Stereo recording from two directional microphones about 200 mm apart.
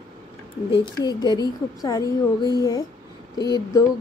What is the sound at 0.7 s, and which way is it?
A woman's voice, 25° left (ahead or behind).